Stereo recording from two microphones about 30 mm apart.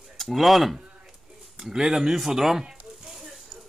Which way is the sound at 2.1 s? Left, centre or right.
Centre.